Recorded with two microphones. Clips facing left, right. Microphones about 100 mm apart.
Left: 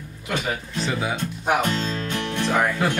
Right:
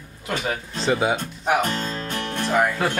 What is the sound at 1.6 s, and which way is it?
Music, 45° right (ahead or behind).